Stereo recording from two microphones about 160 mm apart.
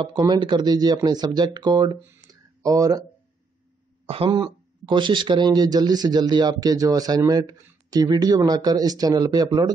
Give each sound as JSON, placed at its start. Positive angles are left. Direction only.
{"t": 0.0, "sound": "speech", "side_deg": -25}
{"t": 2.2, "sound": "a sound", "side_deg": -20}
{"t": 4.1, "sound": "speech", "side_deg": -30}